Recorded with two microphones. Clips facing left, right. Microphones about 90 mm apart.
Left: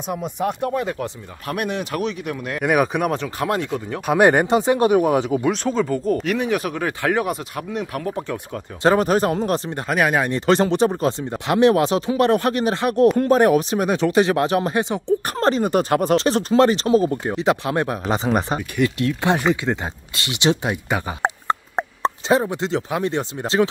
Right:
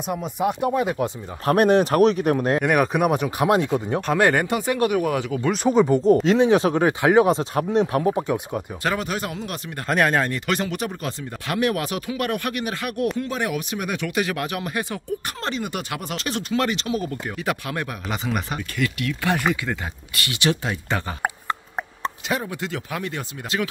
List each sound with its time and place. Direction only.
0.0 s speech: centre (ahead or behind)
1.4 s speech: 35° right (ahead or behind)
2.6 s speech: 5° left (ahead or behind)
3.1 s speech: 15° right (ahead or behind)
4.0 s speech: 10° left (ahead or behind)
4.3 s speech: 25° left (ahead or behind)
5.7 s speech: 20° right (ahead or behind)
8.1 s speech: 15° right (ahead or behind)
8.8 s speech: 40° left (ahead or behind)
9.8 s speech: 5° left (ahead or behind)
10.3 s speech: 30° left (ahead or behind)
13.2 s speech: 45° left (ahead or behind); by 15.1 s 25° left (ahead or behind)
15.2 s speech: 40° left (ahead or behind)